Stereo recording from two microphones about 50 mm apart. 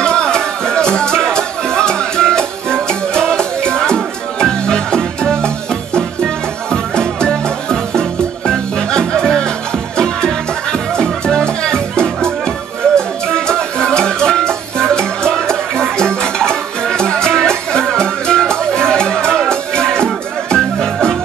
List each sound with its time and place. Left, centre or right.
0.0 s music: centre